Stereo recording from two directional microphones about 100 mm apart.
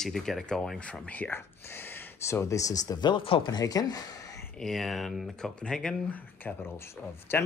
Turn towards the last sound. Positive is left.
turn(degrees=20)  # may be behind; listen again after turning